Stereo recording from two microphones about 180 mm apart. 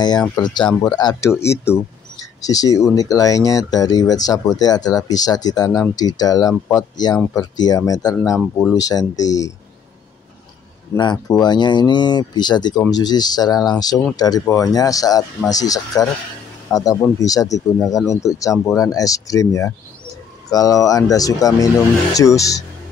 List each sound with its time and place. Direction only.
0.4 s speech: 25° left (ahead or behind)
11.0 s speech: 25° left (ahead or behind)